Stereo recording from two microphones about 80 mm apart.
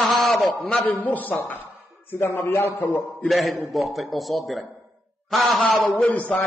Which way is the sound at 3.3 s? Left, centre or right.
Centre.